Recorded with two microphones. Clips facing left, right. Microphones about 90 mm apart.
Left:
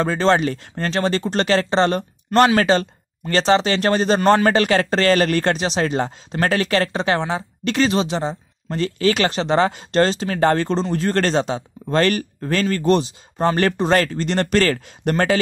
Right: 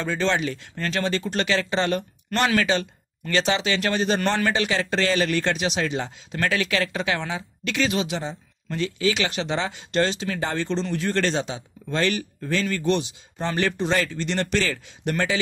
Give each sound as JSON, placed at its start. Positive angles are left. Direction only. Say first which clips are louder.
{"t": 0.0, "sound": "speech", "louder": "left 7 dB", "side_deg": 40}
{"t": 4.5, "sound": "speech", "louder": "left 7 dB", "side_deg": 50}